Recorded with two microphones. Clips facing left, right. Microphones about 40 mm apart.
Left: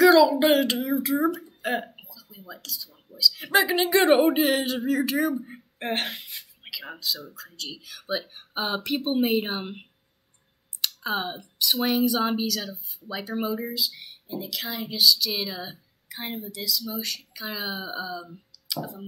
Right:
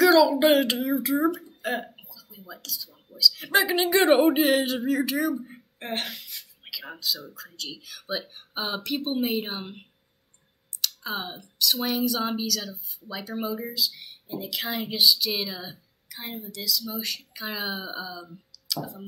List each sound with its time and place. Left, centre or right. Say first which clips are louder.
0.0 s speech: left 1 dB; centre
2.0 s a sound: left 1 dB; centre
3.2 s speech: even; centre
6.1 s a sound: left 2 dB; left
6.6 s a sound: even; centre
7.3 s speech: even; centre
11.1 s speech: left 4 dB; centre
14.2 s speech: right 1 dB; centre
15.4 s speech: left 1 dB; centre
16.1 s a woman's voice: left 3 dB; left
16.5 s speech: right 2 dB; centre